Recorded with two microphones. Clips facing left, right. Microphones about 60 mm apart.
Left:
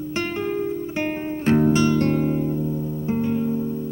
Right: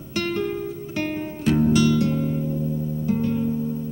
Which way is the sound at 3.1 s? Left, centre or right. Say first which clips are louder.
Even; centre.